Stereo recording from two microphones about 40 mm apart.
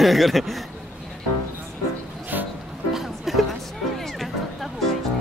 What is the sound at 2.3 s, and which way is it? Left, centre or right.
Music, right.